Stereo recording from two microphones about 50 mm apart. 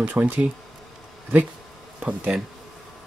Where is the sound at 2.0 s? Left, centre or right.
Right.